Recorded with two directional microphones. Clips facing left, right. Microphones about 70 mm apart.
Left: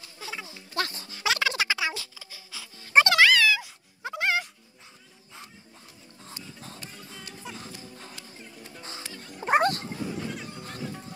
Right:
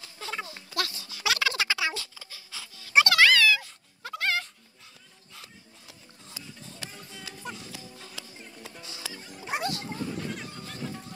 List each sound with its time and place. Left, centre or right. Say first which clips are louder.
0.2 s a sound: right 3 dB; centre
1.1 s a sound: left 1 dB; left
2.7 s music: left 2 dB; left
3.2 s music: left 1 dB; centre
6.2 s music: left 2 dB; left
6.9 s music: even; centre
9.4 s dog: left 9 dB; left
9.8 s music: even; centre